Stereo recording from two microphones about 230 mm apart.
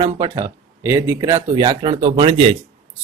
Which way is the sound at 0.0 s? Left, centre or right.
Right.